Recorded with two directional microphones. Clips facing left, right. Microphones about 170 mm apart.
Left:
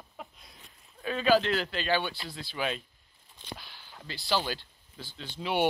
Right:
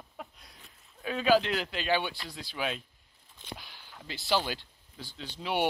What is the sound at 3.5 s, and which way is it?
Speech, 20° right (ahead or behind).